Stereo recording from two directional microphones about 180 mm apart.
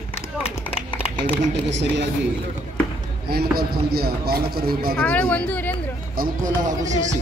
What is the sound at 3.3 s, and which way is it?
Speech, 60° right (ahead or behind).